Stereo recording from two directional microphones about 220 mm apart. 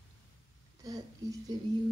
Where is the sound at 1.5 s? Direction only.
20° right (ahead or behind).